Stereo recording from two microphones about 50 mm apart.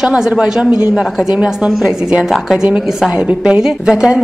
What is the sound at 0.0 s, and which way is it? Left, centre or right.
A woman's voice, centre.